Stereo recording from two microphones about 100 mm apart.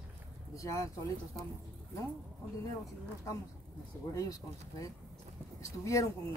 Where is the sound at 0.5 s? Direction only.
35° left (ahead or behind).